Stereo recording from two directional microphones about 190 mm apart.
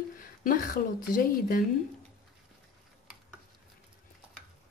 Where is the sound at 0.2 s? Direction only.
45° left (ahead or behind).